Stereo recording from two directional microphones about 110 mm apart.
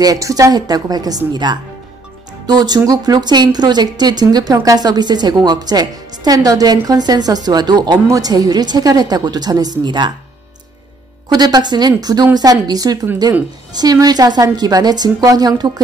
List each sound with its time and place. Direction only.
0.0 s speech: 30° right (ahead or behind)
11.2 s speech: 40° right (ahead or behind)